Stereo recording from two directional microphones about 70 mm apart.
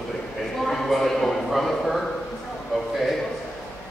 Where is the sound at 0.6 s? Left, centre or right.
Centre.